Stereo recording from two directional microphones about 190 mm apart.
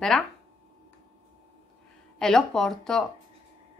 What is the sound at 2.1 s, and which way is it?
Speech, 5° left (ahead or behind).